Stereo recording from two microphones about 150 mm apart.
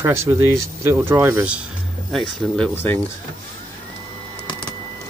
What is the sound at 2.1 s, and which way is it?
Speech, 5° left (ahead or behind).